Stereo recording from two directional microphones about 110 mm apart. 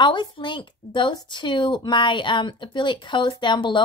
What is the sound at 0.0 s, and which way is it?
A woman's voice, 45° left (ahead or behind).